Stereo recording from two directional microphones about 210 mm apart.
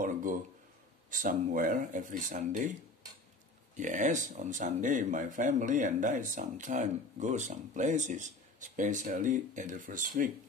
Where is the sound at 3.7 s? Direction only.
35° right (ahead or behind).